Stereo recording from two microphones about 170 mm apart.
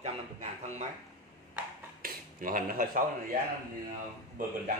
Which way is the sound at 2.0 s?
55° right (ahead or behind).